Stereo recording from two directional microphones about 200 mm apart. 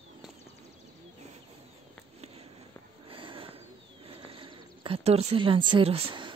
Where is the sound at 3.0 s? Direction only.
25° right (ahead or behind).